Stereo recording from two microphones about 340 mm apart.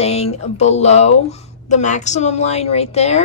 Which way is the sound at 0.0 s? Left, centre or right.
Centre.